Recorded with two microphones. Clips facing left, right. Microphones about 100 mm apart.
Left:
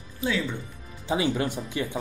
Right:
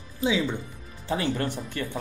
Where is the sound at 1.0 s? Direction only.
10° left (ahead or behind).